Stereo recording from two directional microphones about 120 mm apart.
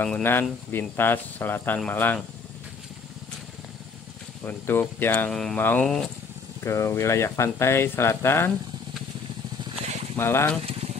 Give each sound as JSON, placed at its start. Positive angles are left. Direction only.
{"t": 0.0, "sound": "speech", "side_deg": 15}
{"t": 4.4, "sound": "speech", "side_deg": 20}
{"t": 5.3, "sound": "speech", "side_deg": 5}
{"t": 5.6, "sound": "speech", "side_deg": 15}
{"t": 10.1, "sound": "speech", "side_deg": 20}
{"t": 10.6, "sound": "boiling", "side_deg": -60}